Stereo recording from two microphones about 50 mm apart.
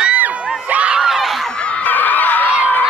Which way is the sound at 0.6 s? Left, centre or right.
Right.